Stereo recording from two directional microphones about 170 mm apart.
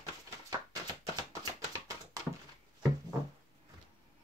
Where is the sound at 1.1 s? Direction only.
25° right (ahead or behind).